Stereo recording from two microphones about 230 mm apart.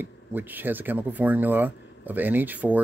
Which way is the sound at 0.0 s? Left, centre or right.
Centre.